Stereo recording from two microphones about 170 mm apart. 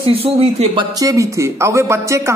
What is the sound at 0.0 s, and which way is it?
Speech, 35° right (ahead or behind).